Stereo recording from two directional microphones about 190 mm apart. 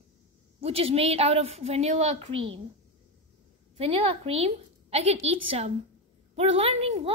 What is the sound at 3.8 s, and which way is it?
A woman's voice, 30° right (ahead or behind).